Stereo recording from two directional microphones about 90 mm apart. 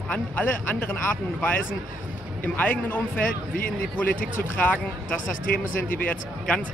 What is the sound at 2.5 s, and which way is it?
Speech, 20° left (ahead or behind).